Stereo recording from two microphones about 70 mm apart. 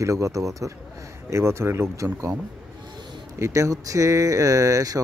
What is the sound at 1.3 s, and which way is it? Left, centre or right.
Speech, right.